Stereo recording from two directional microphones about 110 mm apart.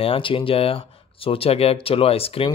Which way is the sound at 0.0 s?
55° left (ahead or behind).